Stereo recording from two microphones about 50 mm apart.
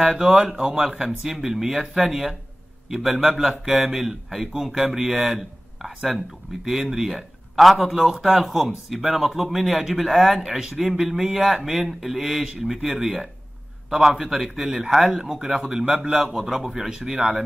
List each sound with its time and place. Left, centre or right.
0.1 s speech: centre